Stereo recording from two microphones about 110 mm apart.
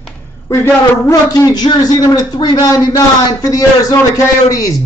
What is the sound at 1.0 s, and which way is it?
Speech, 30° left (ahead or behind).